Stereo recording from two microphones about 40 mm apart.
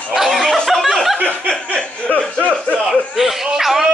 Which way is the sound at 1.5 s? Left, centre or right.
Left.